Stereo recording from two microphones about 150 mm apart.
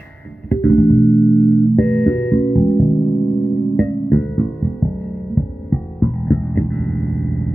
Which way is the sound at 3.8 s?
5° left (ahead or behind).